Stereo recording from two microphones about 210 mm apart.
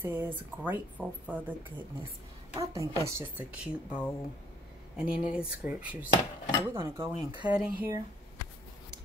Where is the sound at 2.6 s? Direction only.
15° right (ahead or behind).